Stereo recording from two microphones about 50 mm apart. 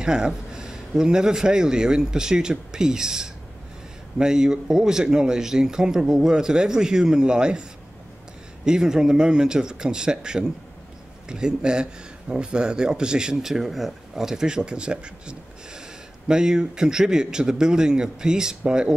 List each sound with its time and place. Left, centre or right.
0.0 s speech: centre
8.6 s speech: centre